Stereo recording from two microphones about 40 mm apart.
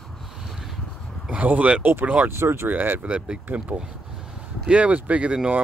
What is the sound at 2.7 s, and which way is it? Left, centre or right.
Speech, right.